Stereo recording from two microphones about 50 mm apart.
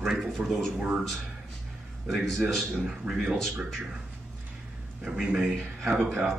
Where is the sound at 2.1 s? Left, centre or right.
Centre.